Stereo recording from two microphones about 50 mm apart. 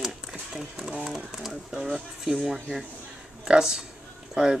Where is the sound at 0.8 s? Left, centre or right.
Centre.